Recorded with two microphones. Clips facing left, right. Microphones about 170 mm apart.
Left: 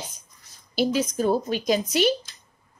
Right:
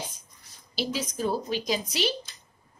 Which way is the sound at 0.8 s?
50° left (ahead or behind).